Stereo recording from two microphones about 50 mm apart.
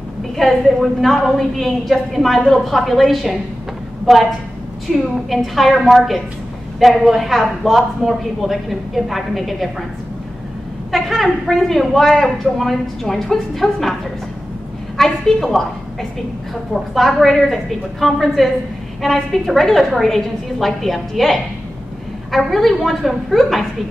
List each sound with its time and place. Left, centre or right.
0.4 s a woman's voice: centre
10.9 s speech: centre
15.0 s speech: centre
22.5 s speech: centre